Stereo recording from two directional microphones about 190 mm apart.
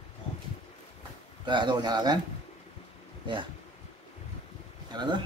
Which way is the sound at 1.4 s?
25° right (ahead or behind).